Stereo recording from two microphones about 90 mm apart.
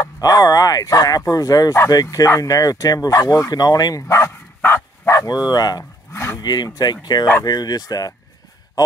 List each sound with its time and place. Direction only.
0.0 s speech: 45° left (ahead or behind)
4.6 s dog: 25° left (ahead or behind)
5.2 s speech: 45° left (ahead or behind)
6.1 s a sound: 30° left (ahead or behind)
6.4 s speech: 50° left (ahead or behind)